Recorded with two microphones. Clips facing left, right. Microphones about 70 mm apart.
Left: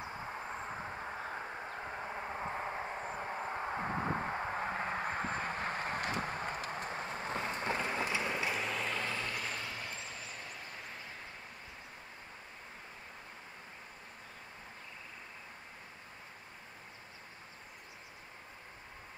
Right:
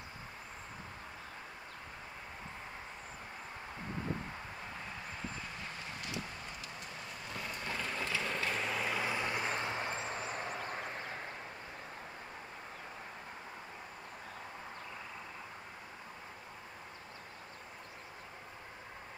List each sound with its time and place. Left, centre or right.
2.1 s vehicle: left; by 8.5 s centre
8.5 s vehicle: centre; by 9.9 s right
9.9 s vehicle: right